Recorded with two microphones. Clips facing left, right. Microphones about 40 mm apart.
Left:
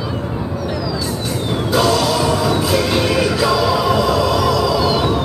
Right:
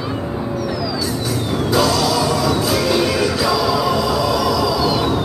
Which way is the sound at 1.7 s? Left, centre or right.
Centre.